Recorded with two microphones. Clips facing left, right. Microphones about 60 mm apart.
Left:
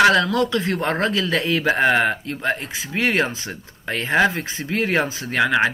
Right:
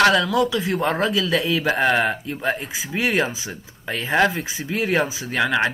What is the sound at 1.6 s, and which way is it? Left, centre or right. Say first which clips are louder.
Speech: left 4 dB; centre.